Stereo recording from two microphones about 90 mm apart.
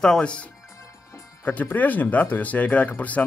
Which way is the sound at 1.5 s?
20° left (ahead or behind).